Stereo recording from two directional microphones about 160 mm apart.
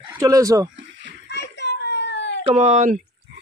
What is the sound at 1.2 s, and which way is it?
Children playing, 90° left.